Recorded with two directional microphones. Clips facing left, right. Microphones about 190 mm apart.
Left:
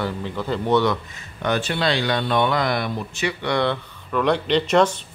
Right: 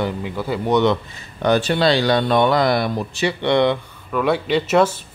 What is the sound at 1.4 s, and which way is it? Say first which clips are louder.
A man's voice: right 6 dB; 35° right (ahead or behind).